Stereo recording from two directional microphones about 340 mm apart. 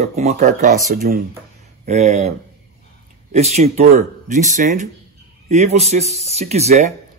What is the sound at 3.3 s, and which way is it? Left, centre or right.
A man's voice, centre.